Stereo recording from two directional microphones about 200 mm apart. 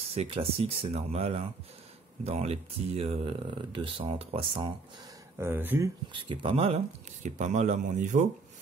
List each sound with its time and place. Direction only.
0.1 s speech: 30° right (ahead or behind)
5.4 s speech: 10° right (ahead or behind)
6.1 s speech: 25° right (ahead or behind)